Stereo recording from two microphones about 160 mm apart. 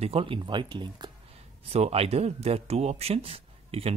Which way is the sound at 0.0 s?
35° right (ahead or behind).